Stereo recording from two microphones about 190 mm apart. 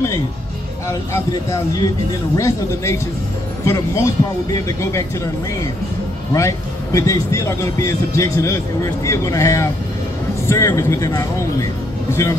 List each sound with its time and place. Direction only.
0.8 s a man's voice: 15° left (ahead or behind)